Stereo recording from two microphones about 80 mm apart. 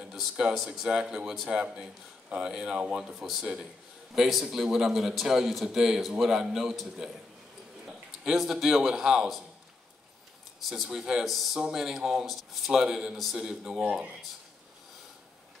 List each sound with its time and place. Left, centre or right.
0.0 s a man's voice: centre
10.7 s a man's voice: centre
13.8 s speech: centre